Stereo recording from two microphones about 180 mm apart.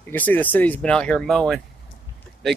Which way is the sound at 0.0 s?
10° left (ahead or behind).